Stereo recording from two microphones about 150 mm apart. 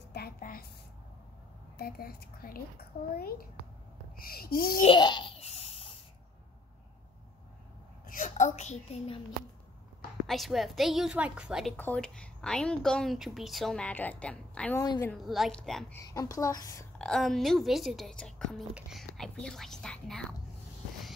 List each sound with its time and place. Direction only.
0.1 s a sound: 80° left
1.8 s a woman's voice: 90° left
4.8 s a sound: 30° left (ahead or behind)
8.1 s a woman's voice: 60° left (ahead or behind); by 9.2 s 40° left (ahead or behind)
10.2 s speech: centre (ahead or behind)
11.7 s speech: 10° left (ahead or behind)
14.8 s a child's voice: 20° left (ahead or behind)
15.1 s speech: centre (ahead or behind)
16.1 s a child's voice: 25° left (ahead or behind)
17.0 s speech: 5° left (ahead or behind)